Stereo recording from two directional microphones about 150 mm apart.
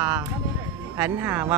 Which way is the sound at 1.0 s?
10° right (ahead or behind).